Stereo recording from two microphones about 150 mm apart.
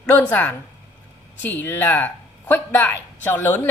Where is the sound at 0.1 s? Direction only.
10° left (ahead or behind).